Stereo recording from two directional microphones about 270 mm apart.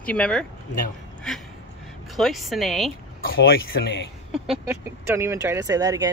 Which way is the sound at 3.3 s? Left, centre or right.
Left.